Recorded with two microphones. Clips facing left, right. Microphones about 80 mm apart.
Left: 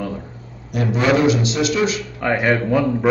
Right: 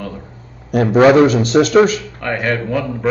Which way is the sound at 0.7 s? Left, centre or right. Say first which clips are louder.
Right 8 dB; right.